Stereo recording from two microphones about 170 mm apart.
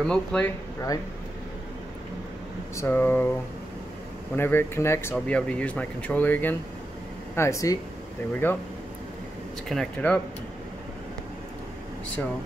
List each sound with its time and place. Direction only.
0.0 s speech: 5° left (ahead or behind)
2.7 s speech: 15° left (ahead or behind)
4.4 s speech: 15° left (ahead or behind)
9.7 s speech: 5° left (ahead or behind)